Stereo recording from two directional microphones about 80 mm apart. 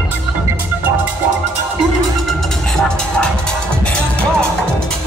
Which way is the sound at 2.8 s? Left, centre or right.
Centre.